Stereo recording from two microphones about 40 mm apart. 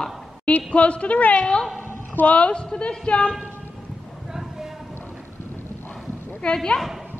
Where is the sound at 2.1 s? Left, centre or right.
Left.